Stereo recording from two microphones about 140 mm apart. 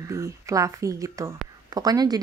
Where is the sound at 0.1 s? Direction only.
20° right (ahead or behind).